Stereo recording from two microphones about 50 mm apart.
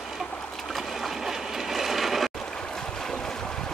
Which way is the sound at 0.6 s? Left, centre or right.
Centre.